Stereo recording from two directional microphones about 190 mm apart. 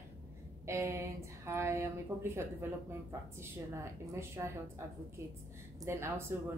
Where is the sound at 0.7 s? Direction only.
15° right (ahead or behind).